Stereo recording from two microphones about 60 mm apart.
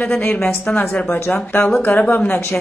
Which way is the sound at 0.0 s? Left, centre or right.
Left.